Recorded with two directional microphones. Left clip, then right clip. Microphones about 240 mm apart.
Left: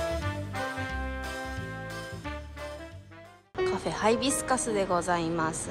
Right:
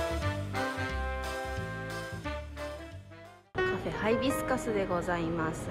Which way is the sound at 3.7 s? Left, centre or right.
Centre.